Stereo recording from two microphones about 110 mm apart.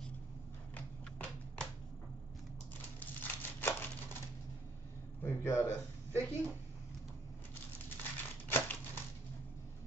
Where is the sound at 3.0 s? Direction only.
15° left (ahead or behind).